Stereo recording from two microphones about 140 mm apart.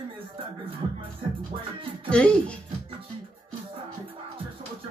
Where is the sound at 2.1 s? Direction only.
10° left (ahead or behind).